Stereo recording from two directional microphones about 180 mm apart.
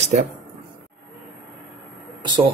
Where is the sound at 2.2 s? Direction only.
25° right (ahead or behind).